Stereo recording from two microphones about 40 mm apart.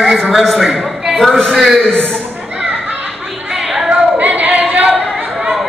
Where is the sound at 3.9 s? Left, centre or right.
Right.